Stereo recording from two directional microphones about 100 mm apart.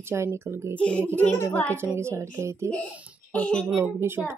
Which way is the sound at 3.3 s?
15° left (ahead or behind).